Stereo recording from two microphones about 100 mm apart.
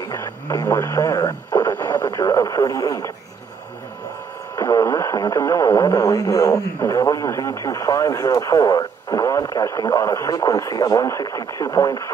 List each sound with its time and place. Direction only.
0.1 s speech: 30° left (ahead or behind)
1.8 s radio: 20° left (ahead or behind)
2.0 s speech: 35° left (ahead or behind)
4.6 s speech: 30° left (ahead or behind)